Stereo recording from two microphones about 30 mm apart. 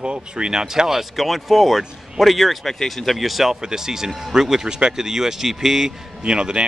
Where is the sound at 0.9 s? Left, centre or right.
Centre.